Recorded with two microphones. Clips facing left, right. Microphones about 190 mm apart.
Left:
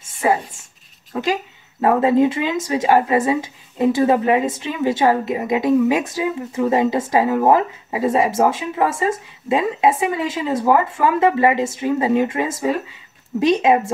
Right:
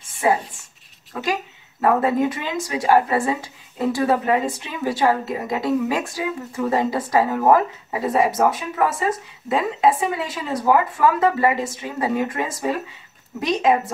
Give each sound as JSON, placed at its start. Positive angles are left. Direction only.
{"t": 1.8, "sound": "speech", "side_deg": 20}